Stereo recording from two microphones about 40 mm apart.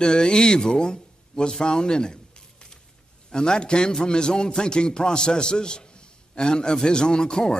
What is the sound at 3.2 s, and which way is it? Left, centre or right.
A man's voice, centre.